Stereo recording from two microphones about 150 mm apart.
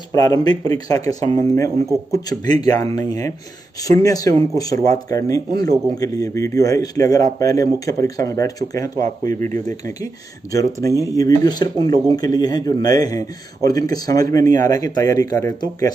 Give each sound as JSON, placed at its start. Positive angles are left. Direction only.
{"t": 0.1, "sound": "speech", "side_deg": 25}
{"t": 10.5, "sound": "speech", "side_deg": 20}